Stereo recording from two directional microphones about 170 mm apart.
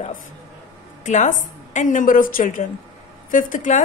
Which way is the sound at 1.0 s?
45° left (ahead or behind).